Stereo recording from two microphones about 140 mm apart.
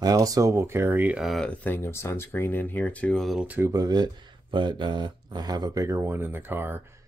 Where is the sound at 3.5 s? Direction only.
20° right (ahead or behind).